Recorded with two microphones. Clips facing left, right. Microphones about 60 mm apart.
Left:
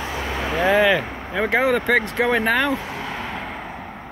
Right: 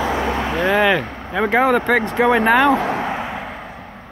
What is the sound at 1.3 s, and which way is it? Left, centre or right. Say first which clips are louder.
Speech: right 3 dB; centre.